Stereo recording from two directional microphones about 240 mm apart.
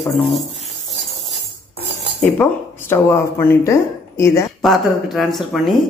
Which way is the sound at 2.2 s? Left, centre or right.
Centre.